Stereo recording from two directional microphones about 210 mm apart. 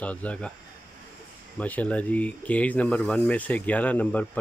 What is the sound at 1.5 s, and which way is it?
Speech, 5° left (ahead or behind).